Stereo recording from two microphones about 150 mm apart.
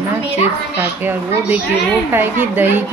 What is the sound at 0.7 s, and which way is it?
Speech, 10° right (ahead or behind).